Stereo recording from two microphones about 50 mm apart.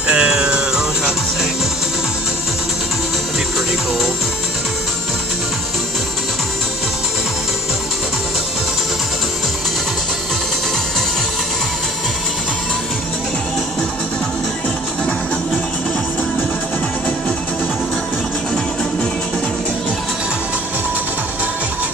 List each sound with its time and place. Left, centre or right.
0.1 s music: centre